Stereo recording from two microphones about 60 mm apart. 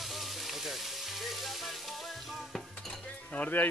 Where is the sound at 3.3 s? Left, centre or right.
Left.